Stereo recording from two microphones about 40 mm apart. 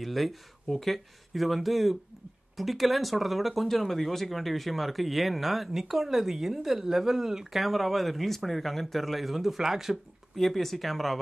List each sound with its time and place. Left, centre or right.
0.0 s speech: centre
10.3 s speech: centre